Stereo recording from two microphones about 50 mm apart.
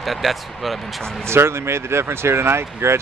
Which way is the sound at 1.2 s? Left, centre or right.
Right.